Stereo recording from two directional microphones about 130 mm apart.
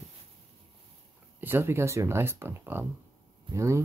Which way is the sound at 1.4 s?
20° right (ahead or behind).